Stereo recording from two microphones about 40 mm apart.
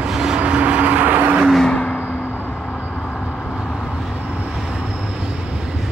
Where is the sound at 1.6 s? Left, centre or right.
Left.